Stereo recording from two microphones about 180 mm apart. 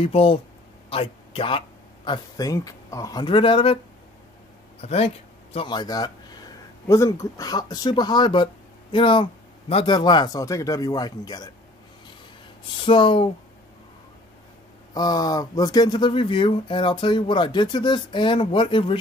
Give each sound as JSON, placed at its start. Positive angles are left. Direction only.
{"t": 0.0, "sound": "a man's voice", "side_deg": 30}
{"t": 4.8, "sound": "speech", "side_deg": 35}
{"t": 12.8, "sound": "speech", "side_deg": 30}
{"t": 15.0, "sound": "speech", "side_deg": 20}